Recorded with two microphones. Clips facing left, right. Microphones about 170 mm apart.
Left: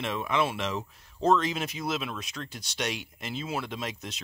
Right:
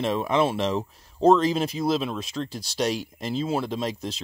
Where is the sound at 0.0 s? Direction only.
35° right (ahead or behind).